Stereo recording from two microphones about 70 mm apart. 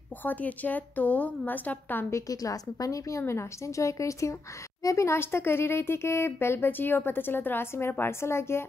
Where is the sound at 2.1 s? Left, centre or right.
Left.